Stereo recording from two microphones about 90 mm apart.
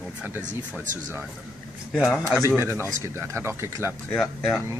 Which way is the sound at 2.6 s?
30° right (ahead or behind).